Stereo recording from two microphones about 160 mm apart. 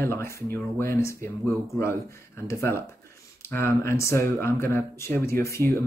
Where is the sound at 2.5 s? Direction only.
15° left (ahead or behind).